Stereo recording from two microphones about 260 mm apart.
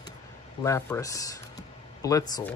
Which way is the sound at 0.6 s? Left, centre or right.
Centre.